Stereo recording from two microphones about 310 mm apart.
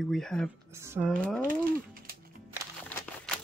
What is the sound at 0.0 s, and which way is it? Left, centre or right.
Speech, centre.